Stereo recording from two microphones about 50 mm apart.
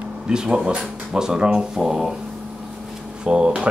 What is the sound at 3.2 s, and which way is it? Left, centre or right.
Speech, centre.